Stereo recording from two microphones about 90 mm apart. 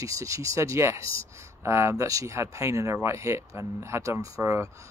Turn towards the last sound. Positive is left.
turn(degrees=-35)  # may be behind; listen again after turning